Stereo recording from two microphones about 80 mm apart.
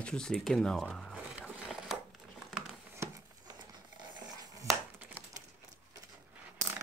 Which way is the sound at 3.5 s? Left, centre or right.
Right.